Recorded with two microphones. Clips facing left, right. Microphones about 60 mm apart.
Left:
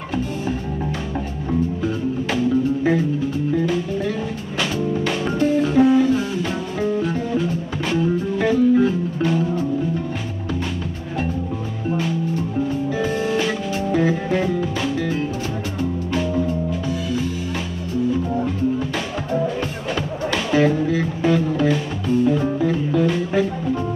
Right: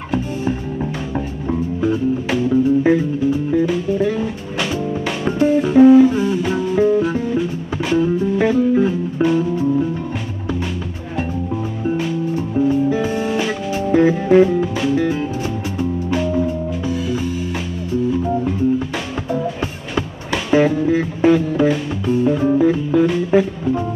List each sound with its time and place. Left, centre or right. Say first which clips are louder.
1.5 s music: right 3 dB; centre
12.0 s music: right 2 dB; centre
20.5 s music: right 3 dB; right
21.0 s music: right 4 dB; centre